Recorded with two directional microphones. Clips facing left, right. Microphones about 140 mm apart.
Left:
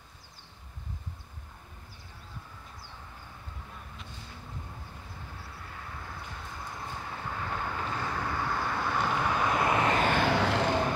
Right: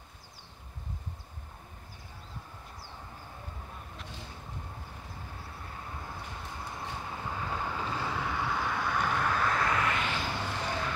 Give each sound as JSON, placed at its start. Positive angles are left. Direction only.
{"t": 7.1, "sound": "vehicle", "side_deg": -15}
{"t": 10.0, "sound": "vehicle", "side_deg": 65}